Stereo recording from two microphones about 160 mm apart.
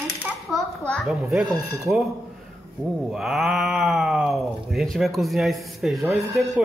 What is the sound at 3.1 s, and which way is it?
Speech, centre (ahead or behind).